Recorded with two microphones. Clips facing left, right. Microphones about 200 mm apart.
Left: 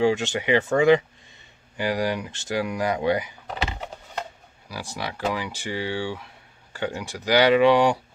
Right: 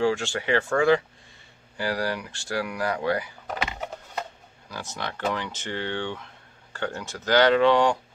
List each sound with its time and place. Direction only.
0.0 s speech: 20° left (ahead or behind)
4.9 s speech: 10° left (ahead or behind)